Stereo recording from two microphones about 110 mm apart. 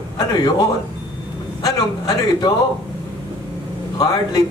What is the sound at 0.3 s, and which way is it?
A man's voice, 35° left (ahead or behind).